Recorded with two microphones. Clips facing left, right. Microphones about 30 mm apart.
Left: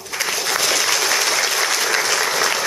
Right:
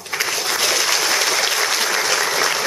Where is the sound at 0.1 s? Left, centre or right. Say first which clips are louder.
Even; centre.